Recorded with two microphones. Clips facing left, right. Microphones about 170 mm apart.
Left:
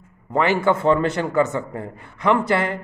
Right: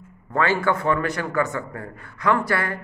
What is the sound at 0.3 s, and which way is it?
A man's voice, 20° left (ahead or behind).